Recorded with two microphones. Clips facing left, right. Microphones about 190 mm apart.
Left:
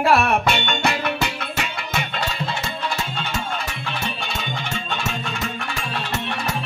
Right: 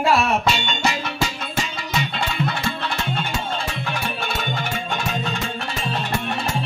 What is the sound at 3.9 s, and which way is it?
Music, 50° right (ahead or behind).